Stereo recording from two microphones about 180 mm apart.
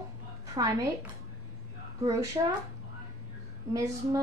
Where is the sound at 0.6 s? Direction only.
20° right (ahead or behind).